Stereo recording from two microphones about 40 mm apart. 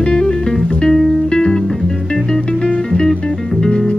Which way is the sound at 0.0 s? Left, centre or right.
Centre.